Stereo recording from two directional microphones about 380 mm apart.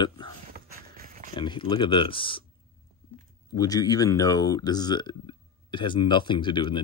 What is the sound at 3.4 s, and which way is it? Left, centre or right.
Speech, centre.